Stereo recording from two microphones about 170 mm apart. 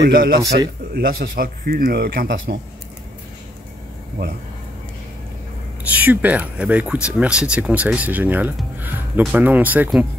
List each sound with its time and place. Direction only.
0.0 s speech: 60° right (ahead or behind)
5.9 s speech: 10° right (ahead or behind)